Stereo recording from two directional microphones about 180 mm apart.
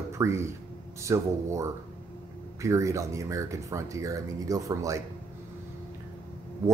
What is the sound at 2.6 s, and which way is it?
Speech, 15° right (ahead or behind).